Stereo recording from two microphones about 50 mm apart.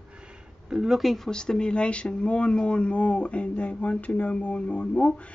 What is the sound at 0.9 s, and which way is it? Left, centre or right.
Speech, centre.